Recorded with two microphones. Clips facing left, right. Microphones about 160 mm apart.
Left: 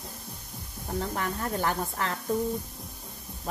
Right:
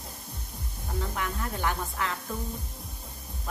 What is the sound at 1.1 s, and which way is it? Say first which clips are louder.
Speech: left 3 dB; 40° left (ahead or behind).